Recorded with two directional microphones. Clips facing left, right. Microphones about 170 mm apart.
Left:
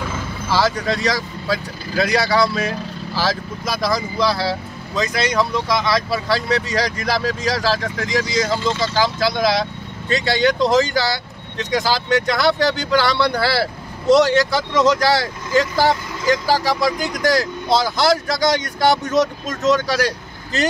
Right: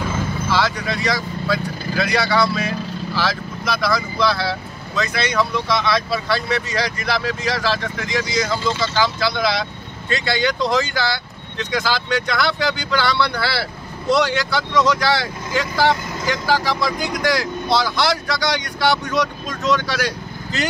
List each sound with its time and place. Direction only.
0.5 s speech: 40° left (ahead or behind)